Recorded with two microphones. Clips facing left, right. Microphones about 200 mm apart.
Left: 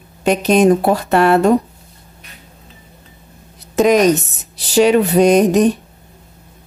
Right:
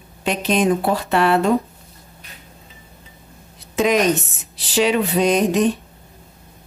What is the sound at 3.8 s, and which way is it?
Speech, 40° left (ahead or behind).